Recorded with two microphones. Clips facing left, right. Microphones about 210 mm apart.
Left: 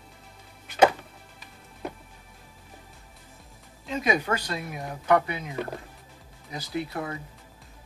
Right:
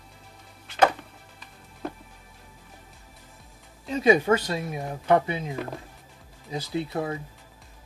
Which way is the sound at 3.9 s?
30° right (ahead or behind).